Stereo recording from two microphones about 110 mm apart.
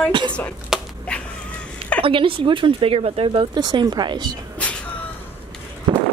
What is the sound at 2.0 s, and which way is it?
Speech, 55° right (ahead or behind).